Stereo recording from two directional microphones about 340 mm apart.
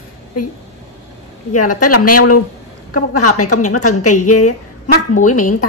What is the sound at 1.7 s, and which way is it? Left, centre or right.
A woman's voice, left.